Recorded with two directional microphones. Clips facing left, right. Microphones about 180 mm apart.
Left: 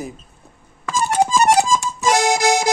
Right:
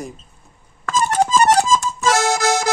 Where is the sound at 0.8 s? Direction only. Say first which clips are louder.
Even; 10° left (ahead or behind).